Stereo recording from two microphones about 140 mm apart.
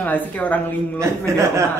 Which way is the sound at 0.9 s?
20° right (ahead or behind).